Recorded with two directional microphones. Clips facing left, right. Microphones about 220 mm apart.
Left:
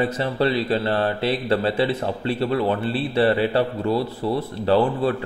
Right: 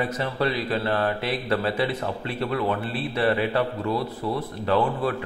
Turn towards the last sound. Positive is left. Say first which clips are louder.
# left 4 dB
turn(degrees=30)  # may be behind; listen again after turning